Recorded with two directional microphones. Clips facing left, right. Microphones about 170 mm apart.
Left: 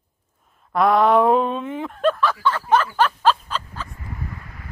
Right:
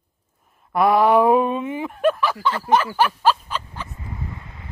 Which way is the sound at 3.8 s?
25° right (ahead or behind).